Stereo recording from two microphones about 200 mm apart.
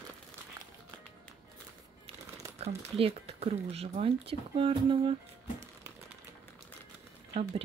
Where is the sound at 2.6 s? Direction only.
30° right (ahead or behind).